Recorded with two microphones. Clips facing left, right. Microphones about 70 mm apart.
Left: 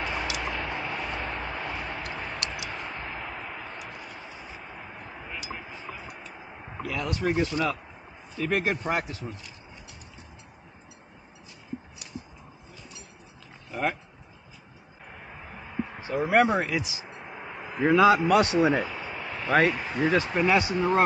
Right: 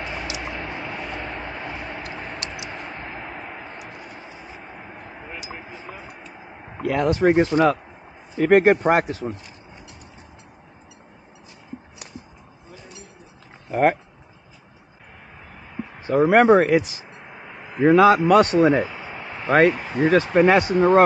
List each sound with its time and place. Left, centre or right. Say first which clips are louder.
0.3 s vehicle: right 1 dB; centre
6.8 s speech: right 10 dB; right
13.7 s speech: right 10 dB; right
16.1 s speech: right 8 dB; right
18.9 s a sound: right 1 dB; centre
19.5 s speech: right 6 dB; right
19.8 s speech: right 5 dB; right
20.3 s speech: right 8 dB; right